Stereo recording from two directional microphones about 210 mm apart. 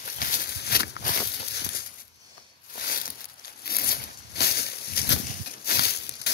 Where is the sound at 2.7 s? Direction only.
45° left (ahead or behind).